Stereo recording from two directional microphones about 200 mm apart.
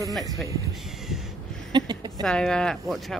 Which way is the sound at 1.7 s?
20° right (ahead or behind).